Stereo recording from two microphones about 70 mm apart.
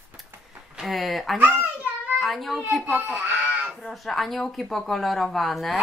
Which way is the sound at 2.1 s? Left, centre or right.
Centre.